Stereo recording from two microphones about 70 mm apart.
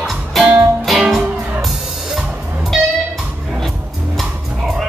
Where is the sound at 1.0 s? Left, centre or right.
Centre.